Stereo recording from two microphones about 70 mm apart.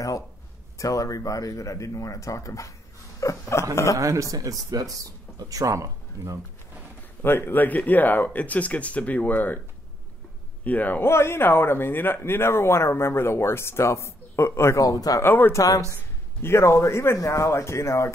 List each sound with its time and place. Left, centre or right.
0.7 s speech: left
4.0 s speech: right
7.2 s speech: left
10.6 s speech: left
11.1 s speech: left
14.8 s speech: left
15.2 s speech: left
15.5 s speech: left
16.0 s speech: left